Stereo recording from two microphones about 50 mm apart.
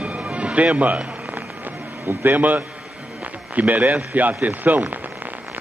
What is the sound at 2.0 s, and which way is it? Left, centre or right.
A man's voice, right.